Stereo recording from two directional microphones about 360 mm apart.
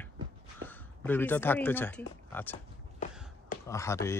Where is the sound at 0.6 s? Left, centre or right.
Right.